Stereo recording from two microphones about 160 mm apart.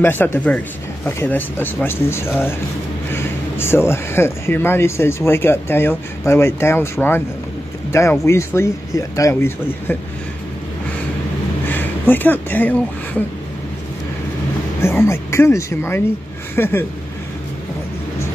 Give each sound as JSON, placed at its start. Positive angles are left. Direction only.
{"t": 0.0, "sound": "speech", "side_deg": 15}
{"t": 11.6, "sound": "a sound", "side_deg": 10}
{"t": 14.8, "sound": "speech", "side_deg": 15}